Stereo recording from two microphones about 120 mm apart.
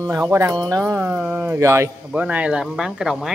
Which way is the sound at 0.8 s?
15° right (ahead or behind).